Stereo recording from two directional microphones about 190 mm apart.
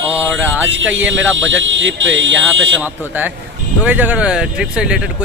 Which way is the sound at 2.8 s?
10° right (ahead or behind).